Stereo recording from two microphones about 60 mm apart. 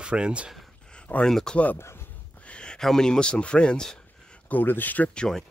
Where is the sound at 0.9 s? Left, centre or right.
Centre.